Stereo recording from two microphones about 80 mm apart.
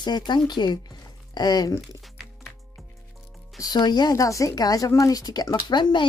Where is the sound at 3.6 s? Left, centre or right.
Left.